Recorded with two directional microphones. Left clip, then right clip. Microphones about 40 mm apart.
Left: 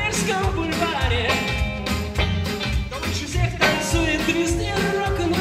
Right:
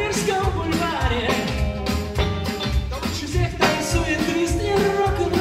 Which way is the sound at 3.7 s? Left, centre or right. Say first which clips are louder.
Left 1 dB; left.